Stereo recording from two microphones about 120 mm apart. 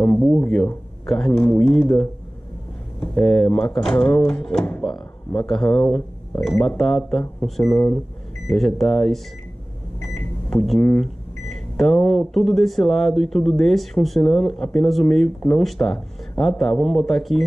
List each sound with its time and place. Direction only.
0.0 s speech: 5° left (ahead or behind)
7.7 s speech: 20° left (ahead or behind)
8.5 s speech: centre (ahead or behind)
10.0 s microwave oven: centre (ahead or behind)
11.0 s speech: 5° left (ahead or behind)